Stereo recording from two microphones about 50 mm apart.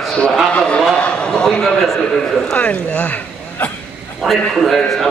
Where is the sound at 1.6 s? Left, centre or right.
Centre.